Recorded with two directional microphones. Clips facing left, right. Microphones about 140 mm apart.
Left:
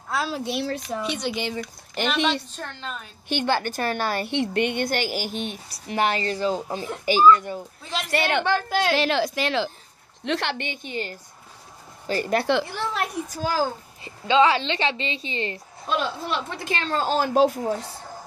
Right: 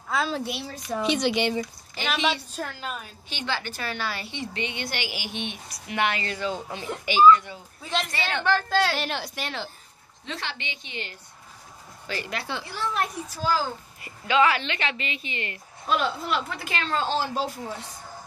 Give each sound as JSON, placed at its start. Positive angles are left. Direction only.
{"t": 0.1, "sound": "a sound", "side_deg": 0}
{"t": 1.0, "sound": "speech", "side_deg": -90}
{"t": 2.2, "sound": "a woman's voice", "side_deg": -5}
{"t": 3.3, "sound": "a woman's voice", "side_deg": 55}
{"t": 4.3, "sound": "a woman's voice", "side_deg": 60}
{"t": 8.1, "sound": "a woman's voice", "side_deg": 65}
{"t": 8.5, "sound": "a woman's voice", "side_deg": 15}
{"t": 8.9, "sound": "a woman's voice", "side_deg": 90}
{"t": 10.2, "sound": "a woman's voice", "side_deg": 65}
{"t": 12.4, "sound": "a woman's voice", "side_deg": 80}
{"t": 13.4, "sound": "a woman's voice", "side_deg": 45}
{"t": 14.0, "sound": "a woman's voice", "side_deg": 25}